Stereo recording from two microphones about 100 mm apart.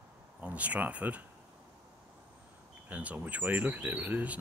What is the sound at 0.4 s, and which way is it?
Speech, 15° right (ahead or behind).